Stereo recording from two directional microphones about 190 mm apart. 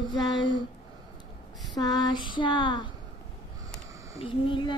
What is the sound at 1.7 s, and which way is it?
Female singing, 20° left (ahead or behind).